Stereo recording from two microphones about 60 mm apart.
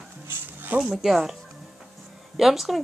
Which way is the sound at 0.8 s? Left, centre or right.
Centre.